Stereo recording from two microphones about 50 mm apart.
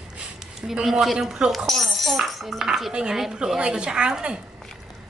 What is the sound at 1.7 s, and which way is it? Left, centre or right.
Dishes, centre.